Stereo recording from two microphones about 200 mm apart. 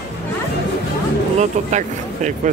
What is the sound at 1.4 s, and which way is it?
Speech, 35° right (ahead or behind).